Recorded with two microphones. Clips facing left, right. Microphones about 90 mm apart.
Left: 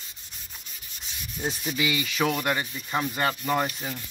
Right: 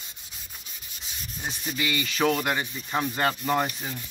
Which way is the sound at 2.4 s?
10° right (ahead or behind).